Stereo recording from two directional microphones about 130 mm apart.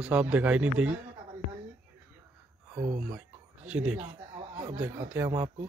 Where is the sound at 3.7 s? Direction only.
10° right (ahead or behind).